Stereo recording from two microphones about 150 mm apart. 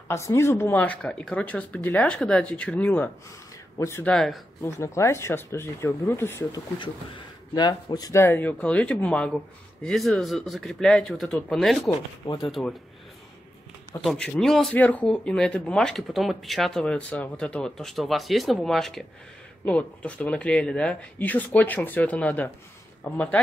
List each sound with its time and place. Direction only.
0.1 s speech: 20° left (ahead or behind)
4.1 s speech: 5° left (ahead or behind)
4.6 s speech: 20° left (ahead or behind)
7.5 s speech: 25° left (ahead or behind); by 12.7 s centre (ahead or behind)
14.0 s speech: 5° left (ahead or behind)